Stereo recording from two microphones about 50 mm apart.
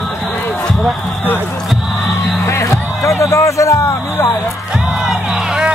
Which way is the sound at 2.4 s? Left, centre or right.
Left.